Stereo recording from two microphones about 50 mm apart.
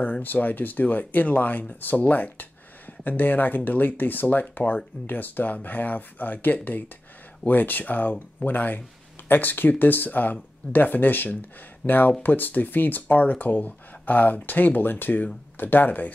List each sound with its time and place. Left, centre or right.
0.0 s speech: left